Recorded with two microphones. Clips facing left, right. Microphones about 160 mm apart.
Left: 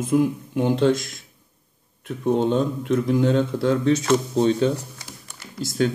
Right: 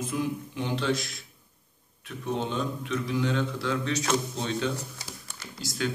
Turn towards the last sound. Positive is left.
turn(degrees=45)  # may be behind; listen again after turning